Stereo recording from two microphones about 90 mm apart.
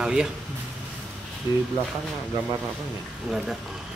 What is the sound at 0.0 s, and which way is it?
Speech, 10° right (ahead or behind).